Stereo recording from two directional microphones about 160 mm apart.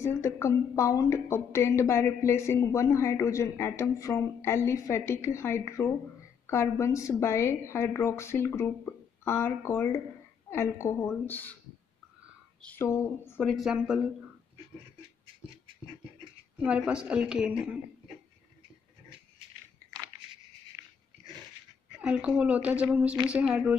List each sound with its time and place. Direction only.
0.0 s a woman's voice: 15° left (ahead or behind)
12.6 s a woman's voice: 15° left (ahead or behind)
13.5 s a woman's voice: centre (ahead or behind)
16.6 s a woman's voice: 5° right (ahead or behind)
22.0 s a woman's voice: 5° right (ahead or behind)